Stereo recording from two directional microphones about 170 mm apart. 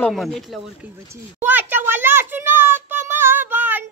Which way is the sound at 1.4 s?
10° right (ahead or behind).